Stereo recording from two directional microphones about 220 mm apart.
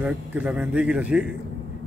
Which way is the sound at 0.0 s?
5° right (ahead or behind).